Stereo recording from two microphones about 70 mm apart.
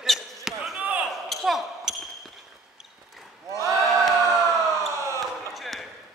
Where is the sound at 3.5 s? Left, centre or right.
Right.